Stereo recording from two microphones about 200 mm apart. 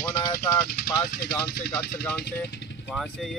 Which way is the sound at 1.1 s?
50° left (ahead or behind).